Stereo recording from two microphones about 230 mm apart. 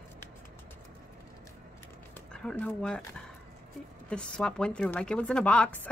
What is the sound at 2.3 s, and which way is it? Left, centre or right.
Speech, centre.